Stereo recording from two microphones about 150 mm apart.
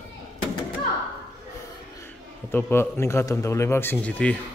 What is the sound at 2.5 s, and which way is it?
A man's voice, 15° left (ahead or behind).